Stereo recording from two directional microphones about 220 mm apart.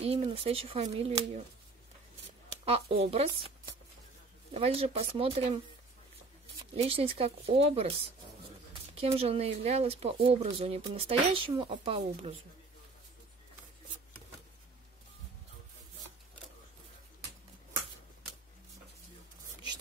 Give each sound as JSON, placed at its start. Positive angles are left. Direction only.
{"t": 0.0, "sound": "speech", "side_deg": -25}
{"t": 2.6, "sound": "speech", "side_deg": -25}
{"t": 4.6, "sound": "speech", "side_deg": -25}
{"t": 6.7, "sound": "speech", "side_deg": -25}
{"t": 9.0, "sound": "speech", "side_deg": -25}